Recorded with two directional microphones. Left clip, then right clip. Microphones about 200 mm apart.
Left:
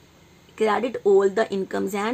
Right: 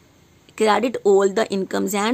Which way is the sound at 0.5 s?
40° right (ahead or behind).